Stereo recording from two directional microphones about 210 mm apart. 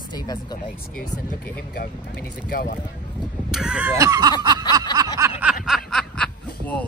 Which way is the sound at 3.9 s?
20° right (ahead or behind).